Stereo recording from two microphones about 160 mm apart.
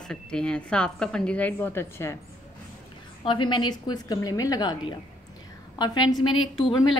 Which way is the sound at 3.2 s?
30° left (ahead or behind).